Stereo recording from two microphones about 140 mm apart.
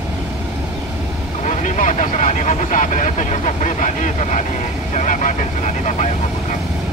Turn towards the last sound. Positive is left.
turn(degrees=60)  # may be behind; listen again after turning